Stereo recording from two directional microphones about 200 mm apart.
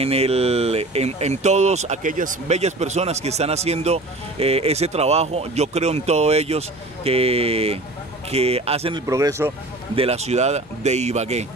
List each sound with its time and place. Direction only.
0.0 s speech: 30° right (ahead or behind)
9.0 s speech: 15° right (ahead or behind)
9.9 s speech: 30° right (ahead or behind)